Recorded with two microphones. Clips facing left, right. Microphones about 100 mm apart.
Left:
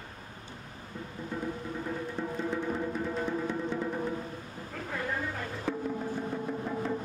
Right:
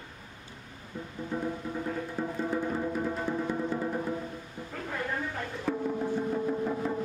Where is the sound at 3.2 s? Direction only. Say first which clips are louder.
Right 1 dB; 5° right (ahead or behind).